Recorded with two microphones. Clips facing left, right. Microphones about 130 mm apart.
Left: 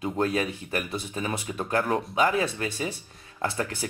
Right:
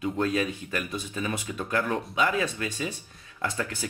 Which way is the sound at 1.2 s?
35° left (ahead or behind).